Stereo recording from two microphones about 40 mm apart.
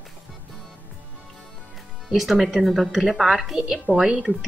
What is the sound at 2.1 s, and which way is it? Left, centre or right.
Speech, centre.